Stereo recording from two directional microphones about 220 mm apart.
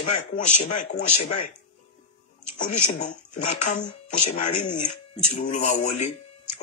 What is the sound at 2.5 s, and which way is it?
Speech, 35° left (ahead or behind).